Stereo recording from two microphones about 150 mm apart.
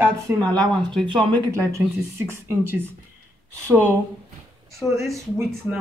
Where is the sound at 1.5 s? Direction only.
20° right (ahead or behind).